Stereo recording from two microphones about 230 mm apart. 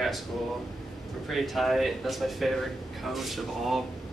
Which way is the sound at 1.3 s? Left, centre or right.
Centre.